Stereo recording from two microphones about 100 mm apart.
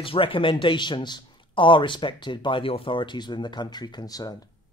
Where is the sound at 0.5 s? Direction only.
50° left (ahead or behind).